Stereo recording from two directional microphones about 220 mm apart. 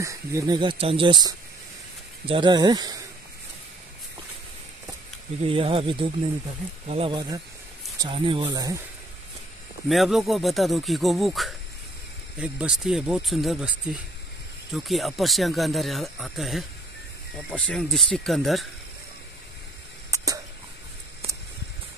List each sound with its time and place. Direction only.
0.0 s speech: 15° right (ahead or behind)
5.4 s speech: 25° right (ahead or behind)
9.8 s speech: centre (ahead or behind)
17.6 s speech: centre (ahead or behind)